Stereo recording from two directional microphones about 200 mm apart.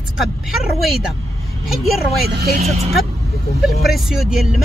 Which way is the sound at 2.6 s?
30° right (ahead or behind).